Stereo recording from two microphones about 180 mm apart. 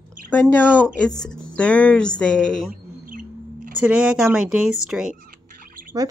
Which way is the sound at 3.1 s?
50° right (ahead or behind).